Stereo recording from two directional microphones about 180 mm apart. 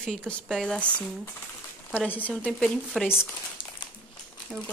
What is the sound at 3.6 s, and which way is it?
Crumpling, 30° left (ahead or behind).